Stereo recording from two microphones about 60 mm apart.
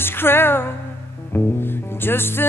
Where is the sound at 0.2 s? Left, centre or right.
Left.